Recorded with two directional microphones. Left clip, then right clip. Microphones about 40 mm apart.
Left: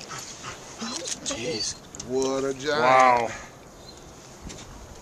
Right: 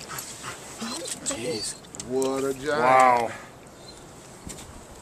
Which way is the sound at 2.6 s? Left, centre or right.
Left.